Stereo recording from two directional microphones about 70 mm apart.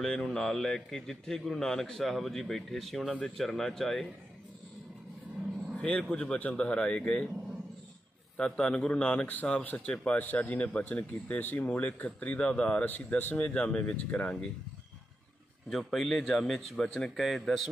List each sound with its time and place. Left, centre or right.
0.0 s speech: centre
5.8 s speech: centre
8.4 s speech: centre
15.7 s speech: centre